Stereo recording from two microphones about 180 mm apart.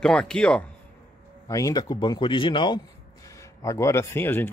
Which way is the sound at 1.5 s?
20° left (ahead or behind).